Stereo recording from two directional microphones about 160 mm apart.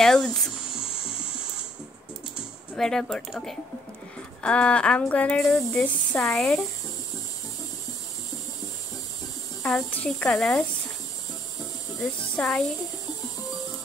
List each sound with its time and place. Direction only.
0.0 s speech: 5° left (ahead or behind)
0.7 s music: 35° left (ahead or behind)
2.7 s speech: 5° left (ahead or behind)
9.6 s speech: 5° left (ahead or behind)
12.4 s speech: centre (ahead or behind)